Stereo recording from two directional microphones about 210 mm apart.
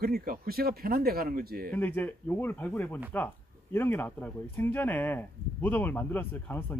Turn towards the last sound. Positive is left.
turn(degrees=10)  # may be behind; listen again after turning